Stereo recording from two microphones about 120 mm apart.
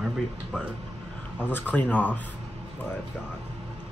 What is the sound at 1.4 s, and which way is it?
Speech, 15° left (ahead or behind).